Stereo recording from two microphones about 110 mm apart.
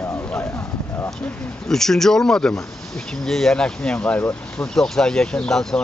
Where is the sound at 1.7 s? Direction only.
5° left (ahead or behind).